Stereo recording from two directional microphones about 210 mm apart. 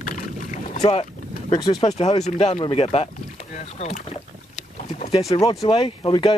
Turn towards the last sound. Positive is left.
turn(degrees=25)  # may be behind; listen again after turning